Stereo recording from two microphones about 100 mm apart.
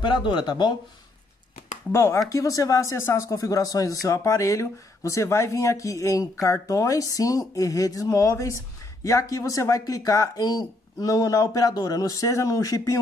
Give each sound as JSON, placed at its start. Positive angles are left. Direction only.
{"t": 0.0, "sound": "speech", "side_deg": 55}
{"t": 1.9, "sound": "speech", "side_deg": 25}